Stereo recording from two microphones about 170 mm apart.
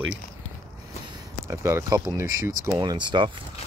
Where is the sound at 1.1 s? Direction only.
15° right (ahead or behind).